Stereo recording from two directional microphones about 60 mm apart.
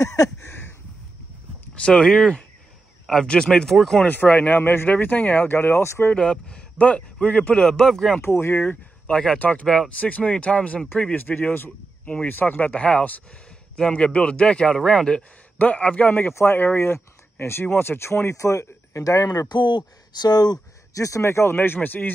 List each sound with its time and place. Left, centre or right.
0.0 s a sound: left
0.4 s a sound: left
1.8 s a man's voice: centre
4.1 s speech: left
6.1 s a man's voice: centre
7.6 s a man's voice: centre
8.2 s speech: left
8.5 s speech: left
9.1 s a man's voice: centre
9.4 s a man's voice: left
15.5 s speech: left
16.3 s speech: left
20.9 s speech: left
21.5 s speech: left